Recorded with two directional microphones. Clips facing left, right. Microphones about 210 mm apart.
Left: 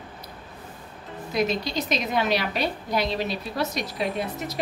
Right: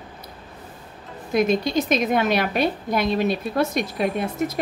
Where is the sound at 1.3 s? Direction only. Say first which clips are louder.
Right 5 dB; 50° right (ahead or behind).